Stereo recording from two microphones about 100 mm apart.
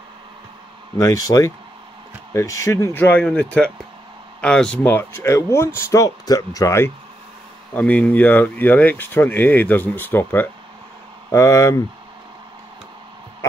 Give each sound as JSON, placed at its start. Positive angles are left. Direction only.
{"t": 0.9, "sound": "speech", "side_deg": 30}
{"t": 4.9, "sound": "speech", "side_deg": 25}
{"t": 7.7, "sound": "speech", "side_deg": 15}
{"t": 11.3, "sound": "speech", "side_deg": 30}